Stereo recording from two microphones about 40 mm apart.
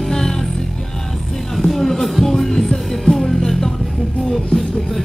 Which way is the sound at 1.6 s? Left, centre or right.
Centre.